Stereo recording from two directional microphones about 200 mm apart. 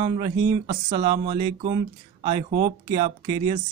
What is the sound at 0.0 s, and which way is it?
Speech, 25° right (ahead or behind).